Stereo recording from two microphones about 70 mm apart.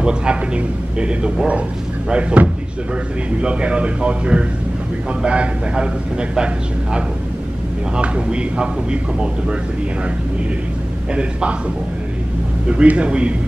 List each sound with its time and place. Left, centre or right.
0.0 s a man's voice: centre
12.6 s a man's voice: centre